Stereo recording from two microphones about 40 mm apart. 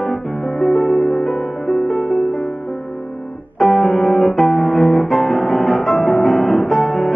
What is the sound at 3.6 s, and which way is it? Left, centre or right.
Music, centre.